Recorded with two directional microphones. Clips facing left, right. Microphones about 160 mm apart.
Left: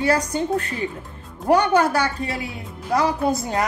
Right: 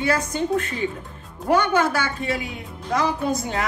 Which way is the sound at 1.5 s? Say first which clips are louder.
Left 2 dB; 40° left (ahead or behind).